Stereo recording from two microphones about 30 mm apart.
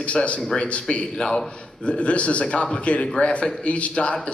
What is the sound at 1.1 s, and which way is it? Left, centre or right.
Speech, left.